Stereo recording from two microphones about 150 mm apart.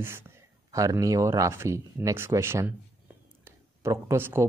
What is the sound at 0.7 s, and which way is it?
Speech, 20° right (ahead or behind).